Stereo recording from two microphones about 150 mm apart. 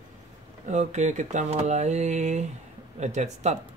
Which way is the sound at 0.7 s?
50° right (ahead or behind).